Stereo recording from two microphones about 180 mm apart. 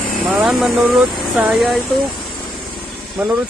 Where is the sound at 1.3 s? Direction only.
5° right (ahead or behind).